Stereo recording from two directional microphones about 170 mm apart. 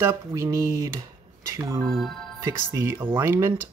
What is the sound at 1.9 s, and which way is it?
Speech, centre (ahead or behind).